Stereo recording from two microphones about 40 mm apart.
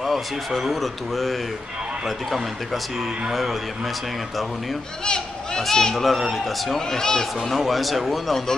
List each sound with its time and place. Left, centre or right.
0.0 s speech: centre
5.0 s speech: centre
7.0 s speech: centre
7.4 s speech: centre